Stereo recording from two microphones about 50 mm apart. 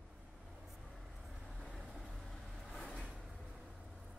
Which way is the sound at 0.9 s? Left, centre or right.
Centre.